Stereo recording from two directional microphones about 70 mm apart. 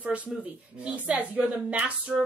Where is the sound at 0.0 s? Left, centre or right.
Right.